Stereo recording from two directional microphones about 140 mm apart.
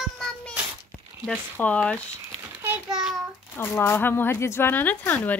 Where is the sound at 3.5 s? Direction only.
15° left (ahead or behind).